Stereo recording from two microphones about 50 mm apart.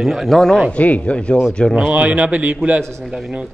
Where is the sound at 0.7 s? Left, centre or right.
Left.